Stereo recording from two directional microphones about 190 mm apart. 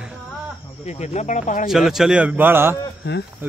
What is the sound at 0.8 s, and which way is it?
Speech, 35° left (ahead or behind).